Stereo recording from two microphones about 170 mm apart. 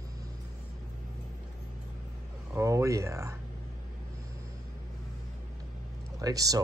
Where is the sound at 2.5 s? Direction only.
15° right (ahead or behind).